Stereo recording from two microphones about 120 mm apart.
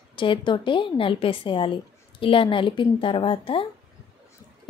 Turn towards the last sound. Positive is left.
turn(degrees=45)  # may be behind; listen again after turning